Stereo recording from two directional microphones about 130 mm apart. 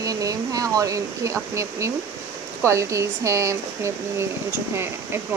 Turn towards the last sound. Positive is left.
turn(degrees=-20)  # may be behind; listen again after turning